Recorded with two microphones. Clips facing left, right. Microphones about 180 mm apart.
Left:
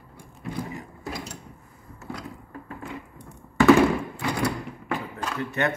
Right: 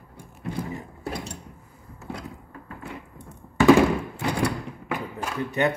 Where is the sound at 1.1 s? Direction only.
30° right (ahead or behind).